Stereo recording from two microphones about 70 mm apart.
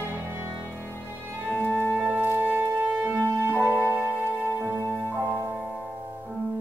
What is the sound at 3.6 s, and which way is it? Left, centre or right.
Music, left.